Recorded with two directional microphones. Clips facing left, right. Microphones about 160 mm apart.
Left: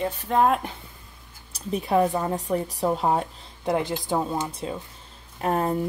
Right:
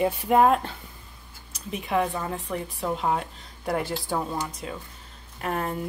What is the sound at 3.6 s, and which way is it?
Speech, 20° left (ahead or behind).